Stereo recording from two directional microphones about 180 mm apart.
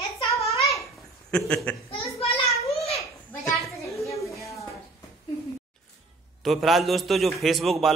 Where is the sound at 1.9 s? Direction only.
35° left (ahead or behind).